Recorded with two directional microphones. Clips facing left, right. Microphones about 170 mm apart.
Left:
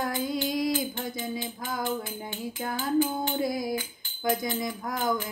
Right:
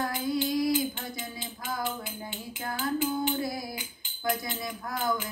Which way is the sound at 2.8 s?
20° left (ahead or behind).